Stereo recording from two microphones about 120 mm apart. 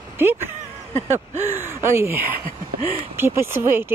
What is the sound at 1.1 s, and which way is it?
Speech, 20° right (ahead or behind).